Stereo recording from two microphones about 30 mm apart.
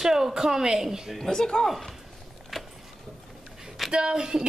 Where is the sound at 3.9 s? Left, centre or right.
Right.